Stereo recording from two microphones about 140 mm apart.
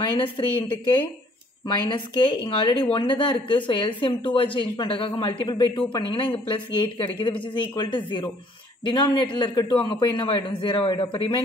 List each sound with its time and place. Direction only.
0.0 s speech: 40° left (ahead or behind)
1.7 s speech: 35° left (ahead or behind)